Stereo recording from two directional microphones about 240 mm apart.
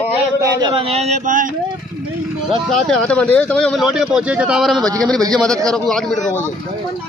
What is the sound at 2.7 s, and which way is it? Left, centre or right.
Speech, centre.